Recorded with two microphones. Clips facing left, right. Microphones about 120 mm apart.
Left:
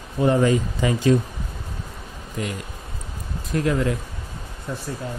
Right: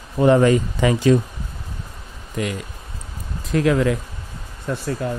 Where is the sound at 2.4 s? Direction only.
90° right.